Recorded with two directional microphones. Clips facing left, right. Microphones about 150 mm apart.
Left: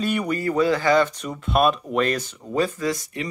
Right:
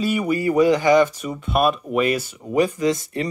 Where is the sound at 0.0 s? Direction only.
5° right (ahead or behind); by 3.1 s 20° right (ahead or behind).